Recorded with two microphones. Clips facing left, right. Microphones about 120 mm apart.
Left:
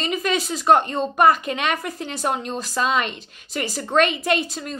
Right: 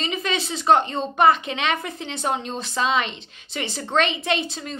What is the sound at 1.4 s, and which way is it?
A woman's voice, 45° left (ahead or behind).